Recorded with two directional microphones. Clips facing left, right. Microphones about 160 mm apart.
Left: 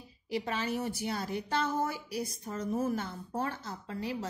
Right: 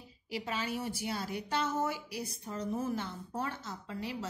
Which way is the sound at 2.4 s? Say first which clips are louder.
Left 2 dB; 50° left (ahead or behind).